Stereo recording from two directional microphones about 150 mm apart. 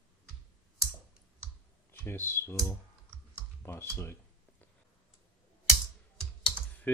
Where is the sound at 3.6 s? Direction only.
15° left (ahead or behind).